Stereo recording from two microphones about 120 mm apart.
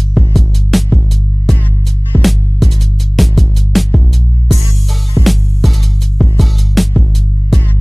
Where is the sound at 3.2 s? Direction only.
Centre (ahead or behind).